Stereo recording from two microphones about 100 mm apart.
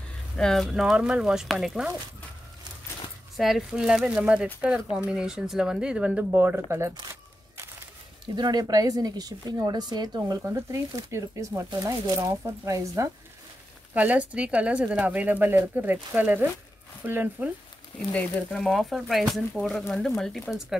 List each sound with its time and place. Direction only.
0.4 s speech: 5° left (ahead or behind)
3.3 s speech: centre (ahead or behind); by 6.6 s 20° right (ahead or behind)
8.4 s speech: 45° right (ahead or behind)
10.4 s speech: 30° right (ahead or behind)
13.9 s speech: 15° right (ahead or behind)
18.1 s speech: 5° left (ahead or behind)